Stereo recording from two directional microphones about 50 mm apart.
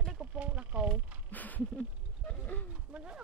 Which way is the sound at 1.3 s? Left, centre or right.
Left.